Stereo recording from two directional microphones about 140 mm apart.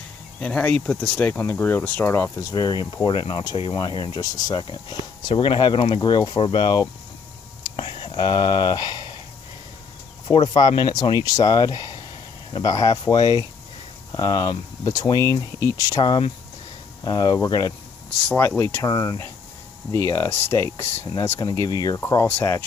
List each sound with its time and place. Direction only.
0.4 s speech: 10° left (ahead or behind)
2.5 s speech: 30° left (ahead or behind)
10.3 s speech: 35° left (ahead or behind)
16.0 s speech: 35° left (ahead or behind)
19.9 s speech: 15° left (ahead or behind)
21.4 s speech: 30° left (ahead or behind)